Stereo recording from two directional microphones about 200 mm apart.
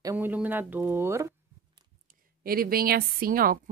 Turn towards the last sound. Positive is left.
turn(degrees=-45)  # may be behind; listen again after turning